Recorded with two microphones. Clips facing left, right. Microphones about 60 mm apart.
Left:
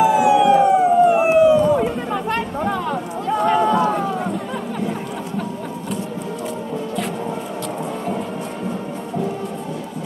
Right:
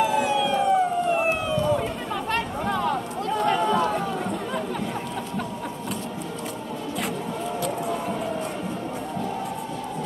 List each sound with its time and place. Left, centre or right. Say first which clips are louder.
0.0 s emergency vehicle: left 8 dB; centre
1.8 s a sound: left 7 dB; centre
2.3 s run: left 4 dB; centre